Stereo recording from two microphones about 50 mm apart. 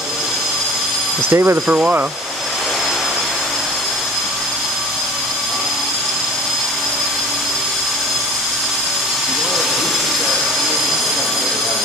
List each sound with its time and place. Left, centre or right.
1.3 s speech: right
1.7 s speech: right